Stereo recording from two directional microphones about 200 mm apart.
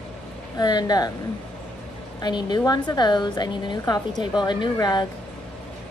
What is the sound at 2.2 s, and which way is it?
A woman's voice, 20° left (ahead or behind).